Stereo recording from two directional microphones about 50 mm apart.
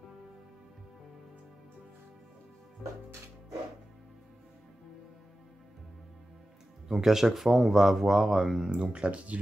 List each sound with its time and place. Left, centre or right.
2.8 s music: centre
6.9 s speech: centre
8.6 s speech: centre